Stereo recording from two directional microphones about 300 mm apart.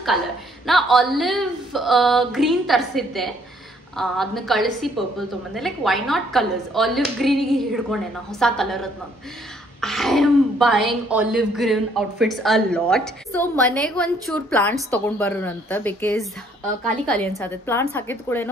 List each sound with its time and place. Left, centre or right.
0.7 s a woman's voice: centre